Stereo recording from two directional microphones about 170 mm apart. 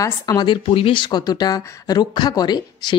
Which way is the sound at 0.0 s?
25° left (ahead or behind).